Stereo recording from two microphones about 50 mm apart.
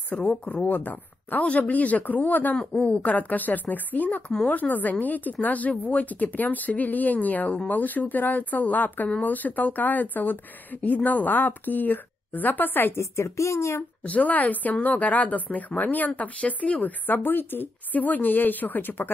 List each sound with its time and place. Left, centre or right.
0.2 s speech: left
2.7 s a woman's voice: centre
3.0 s speech: left
12.9 s speech: left
14.0 s speech: left